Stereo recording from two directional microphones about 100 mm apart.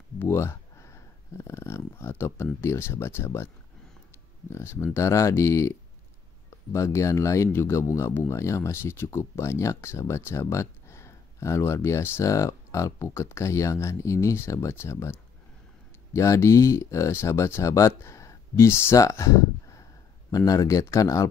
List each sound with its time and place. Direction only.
0.2 s a sound: 25° left (ahead or behind)
1.4 s speech: 25° left (ahead or behind)
4.5 s speech: 25° left (ahead or behind)